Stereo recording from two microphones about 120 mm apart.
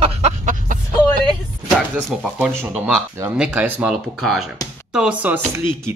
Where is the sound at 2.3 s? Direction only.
10° right (ahead or behind).